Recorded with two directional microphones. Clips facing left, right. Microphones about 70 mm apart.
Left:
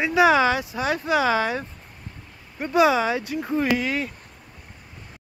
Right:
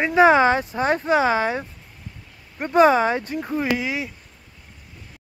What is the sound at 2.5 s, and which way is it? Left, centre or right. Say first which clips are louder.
Speech: right 3 dB; right.